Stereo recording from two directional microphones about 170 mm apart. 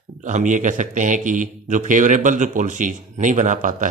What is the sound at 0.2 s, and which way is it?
A man's voice, 45° right (ahead or behind).